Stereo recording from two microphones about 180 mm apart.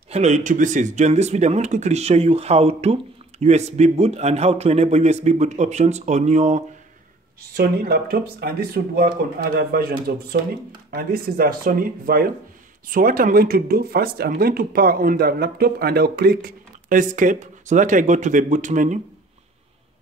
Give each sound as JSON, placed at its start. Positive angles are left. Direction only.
{"t": 0.1, "sound": "speech", "side_deg": -40}
{"t": 7.5, "sound": "speech", "side_deg": -60}